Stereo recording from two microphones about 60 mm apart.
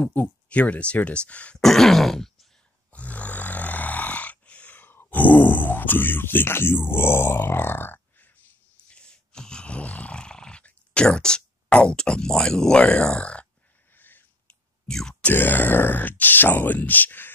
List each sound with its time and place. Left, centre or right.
0.0 s speech: left
1.6 s throat clearing: centre
2.9 s snoring: left
8.8 s groan: centre
10.6 s speech: centre
13.9 s a sound: left
14.5 s clicking: centre
15.3 s speech: left